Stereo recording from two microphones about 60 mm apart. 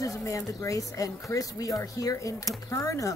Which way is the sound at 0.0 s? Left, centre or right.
Left.